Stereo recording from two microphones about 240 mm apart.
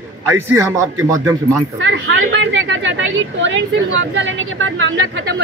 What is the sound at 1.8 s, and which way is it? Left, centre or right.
A woman's voice, right.